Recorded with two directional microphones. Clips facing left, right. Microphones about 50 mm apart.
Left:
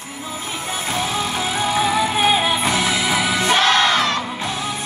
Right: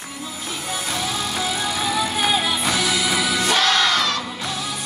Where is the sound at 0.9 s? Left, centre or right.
Left.